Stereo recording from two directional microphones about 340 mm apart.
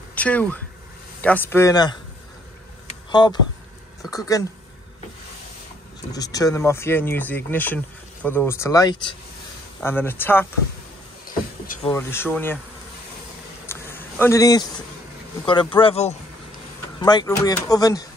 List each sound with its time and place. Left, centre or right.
0.1 s speech: centre
3.1 s speech: centre
6.1 s speech: centre
11.6 s a sound: left
11.9 s speech: centre
13.7 s a sound: centre
15.4 s speech: centre